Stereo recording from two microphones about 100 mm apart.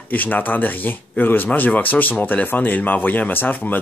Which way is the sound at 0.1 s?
15° left (ahead or behind).